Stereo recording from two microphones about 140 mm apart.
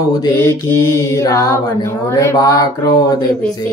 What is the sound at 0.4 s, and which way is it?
Speech, 15° left (ahead or behind).